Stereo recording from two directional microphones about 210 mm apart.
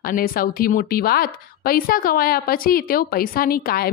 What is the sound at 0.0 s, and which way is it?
Speech, 40° left (ahead or behind).